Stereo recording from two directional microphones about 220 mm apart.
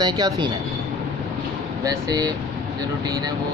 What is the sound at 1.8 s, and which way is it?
Speech, 15° right (ahead or behind).